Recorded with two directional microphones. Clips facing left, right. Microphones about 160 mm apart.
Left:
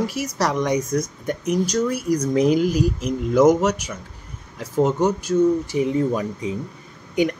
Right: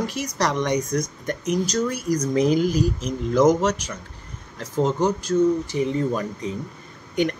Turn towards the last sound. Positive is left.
turn(degrees=10)  # may be behind; listen again after turning